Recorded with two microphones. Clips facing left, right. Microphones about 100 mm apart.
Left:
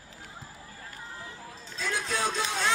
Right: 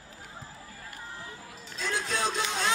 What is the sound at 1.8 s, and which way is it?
Music, 25° right (ahead or behind).